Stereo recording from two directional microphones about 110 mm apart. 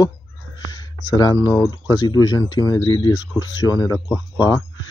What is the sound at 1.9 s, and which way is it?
Speech, 35° left (ahead or behind).